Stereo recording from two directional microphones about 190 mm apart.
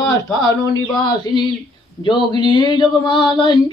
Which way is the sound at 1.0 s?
20° left (ahead or behind).